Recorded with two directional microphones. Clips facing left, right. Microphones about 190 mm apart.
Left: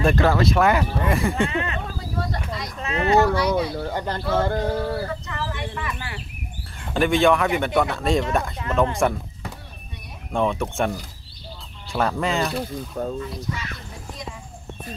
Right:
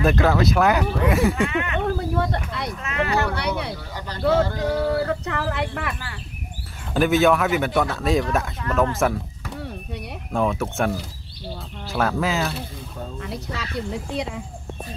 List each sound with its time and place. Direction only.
0.0 s speech: centre (ahead or behind)
1.5 s speech: 30° left (ahead or behind)
1.9 s a sound: 60° right (ahead or behind)
2.8 s a sound: 30° left (ahead or behind)
3.2 s speech: 65° right (ahead or behind)
3.8 s a sound: 55° left (ahead or behind)
5.0 s speech: 65° right (ahead or behind)
6.9 s speech: 5° right (ahead or behind)
10.3 s speech: centre (ahead or behind)
13.2 s speech: 70° right (ahead or behind)